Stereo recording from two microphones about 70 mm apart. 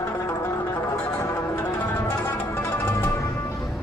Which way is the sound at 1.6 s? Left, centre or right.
Left.